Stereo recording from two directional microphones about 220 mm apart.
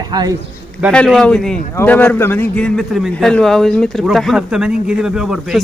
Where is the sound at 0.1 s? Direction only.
20° right (ahead or behind).